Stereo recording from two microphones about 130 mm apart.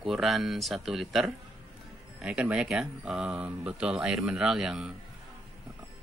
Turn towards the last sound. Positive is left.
turn(degrees=-5)  # may be behind; listen again after turning